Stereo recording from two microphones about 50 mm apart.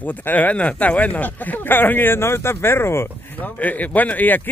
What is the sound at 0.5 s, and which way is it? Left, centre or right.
Speech, left.